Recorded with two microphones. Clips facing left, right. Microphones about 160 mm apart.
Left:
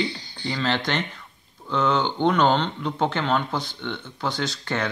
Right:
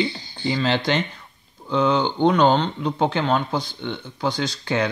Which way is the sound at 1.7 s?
15° right (ahead or behind).